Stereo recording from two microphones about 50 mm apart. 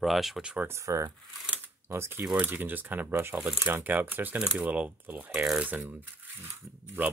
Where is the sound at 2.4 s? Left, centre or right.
Right.